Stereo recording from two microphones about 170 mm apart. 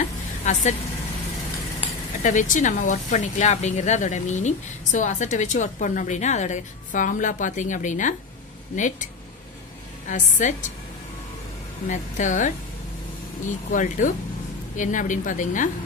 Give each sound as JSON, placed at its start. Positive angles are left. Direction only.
{"t": 0.4, "sound": "speech", "side_deg": 40}
{"t": 2.2, "sound": "a woman's voice", "side_deg": 50}
{"t": 11.9, "sound": "a woman's voice", "side_deg": 45}